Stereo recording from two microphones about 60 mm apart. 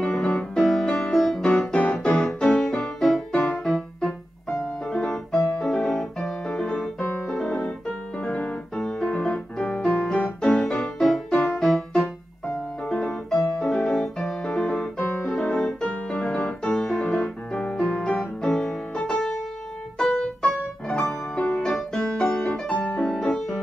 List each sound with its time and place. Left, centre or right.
0.0 s music: centre
2.0 s keyboard: centre
2.4 s music: centre
8.2 s piano: centre
10.4 s music: centre
12.9 s piano: centre
14.2 s music: centre
20.4 s piano: centre
21.1 s music: centre
21.9 s piano: centre